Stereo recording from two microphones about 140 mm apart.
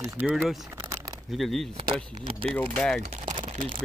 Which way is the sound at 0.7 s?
20° right (ahead or behind).